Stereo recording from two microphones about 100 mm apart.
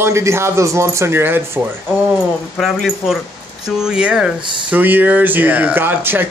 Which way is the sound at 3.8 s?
10° right (ahead or behind).